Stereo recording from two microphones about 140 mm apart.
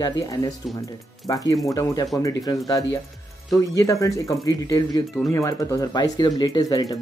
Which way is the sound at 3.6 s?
25° left (ahead or behind).